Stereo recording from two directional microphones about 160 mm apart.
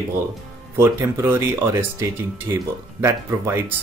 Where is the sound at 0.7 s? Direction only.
15° right (ahead or behind).